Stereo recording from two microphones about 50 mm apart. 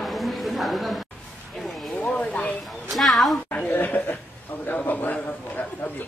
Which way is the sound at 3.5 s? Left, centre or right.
Left.